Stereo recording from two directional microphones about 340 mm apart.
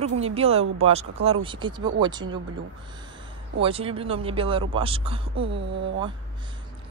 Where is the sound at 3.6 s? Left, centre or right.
Centre.